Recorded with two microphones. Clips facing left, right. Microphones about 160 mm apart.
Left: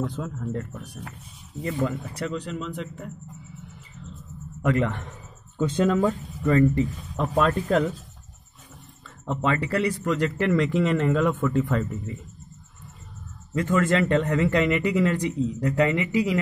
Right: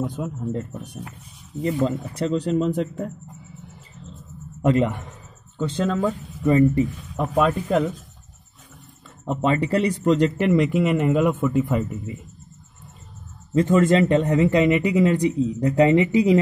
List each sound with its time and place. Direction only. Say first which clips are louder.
0.0 s a man's voice: right 3 dB; 15° right (ahead or behind); by 3.1 s 40° right (ahead or behind)
4.6 s a man's voice: right 4 dB; 25° right (ahead or behind)
5.6 s speech: left 1 dB; 10° left (ahead or behind)
6.4 s a man's voice: right 3 dB; 15° right (ahead or behind)
9.2 s a man's voice: right 4 dB; 20° right (ahead or behind)
13.6 s a man's voice: right 5 dB; 20° right (ahead or behind)